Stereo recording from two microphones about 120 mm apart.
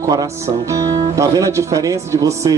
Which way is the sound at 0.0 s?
30° right (ahead or behind).